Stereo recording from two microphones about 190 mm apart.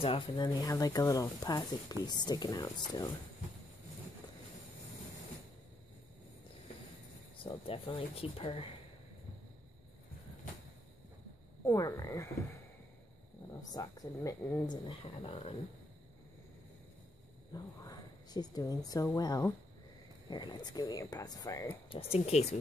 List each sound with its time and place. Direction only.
0.0 s speech: 25° left (ahead or behind)
7.4 s speech: 30° left (ahead or behind)
11.6 s speech: 15° left (ahead or behind)
13.5 s speech: 20° left (ahead or behind)
17.5 s a sound: 20° left (ahead or behind)
18.9 s speech: 20° left (ahead or behind)
21.8 s speech: 30° left (ahead or behind)